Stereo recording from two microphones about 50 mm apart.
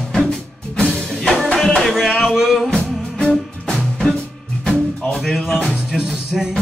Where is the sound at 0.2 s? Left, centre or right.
Centre.